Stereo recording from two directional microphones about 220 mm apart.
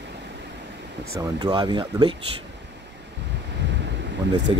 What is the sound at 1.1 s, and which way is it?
Speech, 15° right (ahead or behind).